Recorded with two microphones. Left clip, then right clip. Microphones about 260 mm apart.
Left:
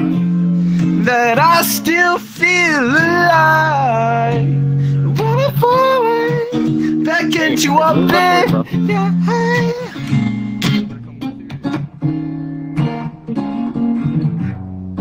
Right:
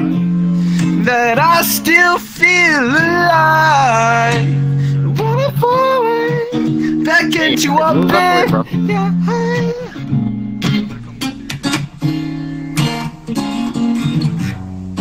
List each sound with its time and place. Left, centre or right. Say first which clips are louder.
0.0 s music: even; centre
0.6 s music: right 1 dB; right
0.9 s music: even; centre
3.6 s mantra: right 4 dB; right
4.7 s music: even; centre
5.1 s music: even; centre
7.3 s music: even; centre
10.1 s music: left 1 dB; left
10.7 s music: even; centre
11.2 s music: right 4 dB; right